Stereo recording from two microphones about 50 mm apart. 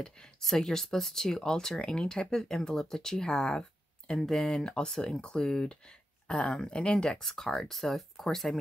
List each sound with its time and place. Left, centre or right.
0.0 s speech: centre
7.2 s speech: centre